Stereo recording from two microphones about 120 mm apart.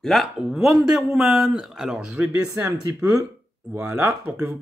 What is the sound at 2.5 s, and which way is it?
Speech, 20° right (ahead or behind).